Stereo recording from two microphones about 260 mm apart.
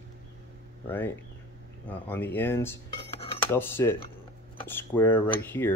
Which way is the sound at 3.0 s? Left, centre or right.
Left.